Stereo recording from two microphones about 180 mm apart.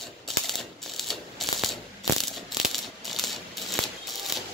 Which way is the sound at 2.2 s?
Centre (ahead or behind).